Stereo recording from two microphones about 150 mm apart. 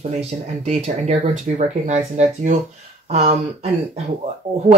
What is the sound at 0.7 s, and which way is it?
Speech, 50° right (ahead or behind).